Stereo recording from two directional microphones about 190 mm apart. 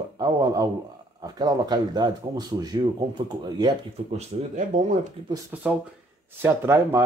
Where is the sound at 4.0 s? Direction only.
30° right (ahead or behind).